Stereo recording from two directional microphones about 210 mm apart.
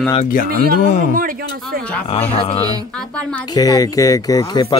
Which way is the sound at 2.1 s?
25° left (ahead or behind).